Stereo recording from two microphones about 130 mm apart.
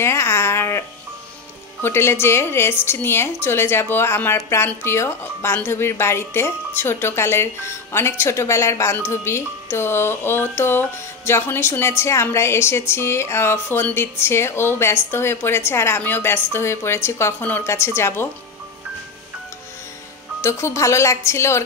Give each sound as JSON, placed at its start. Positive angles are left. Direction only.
{"t": 0.0, "sound": "a sound", "side_deg": 20}
{"t": 1.8, "sound": "speech", "side_deg": 20}
{"t": 20.4, "sound": "speech", "side_deg": 20}